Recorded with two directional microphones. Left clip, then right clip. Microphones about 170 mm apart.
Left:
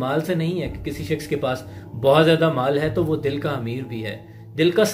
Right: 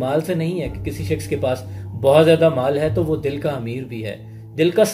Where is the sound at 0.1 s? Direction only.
15° right (ahead or behind).